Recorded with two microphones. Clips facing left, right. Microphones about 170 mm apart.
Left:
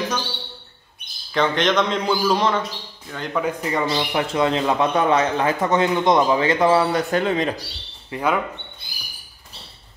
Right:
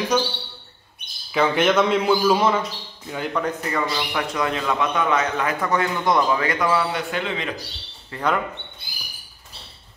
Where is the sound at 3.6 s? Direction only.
20° left (ahead or behind); by 7.6 s 40° left (ahead or behind).